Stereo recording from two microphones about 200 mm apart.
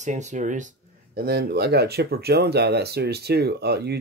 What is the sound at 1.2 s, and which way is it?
Speech, 50° right (ahead or behind).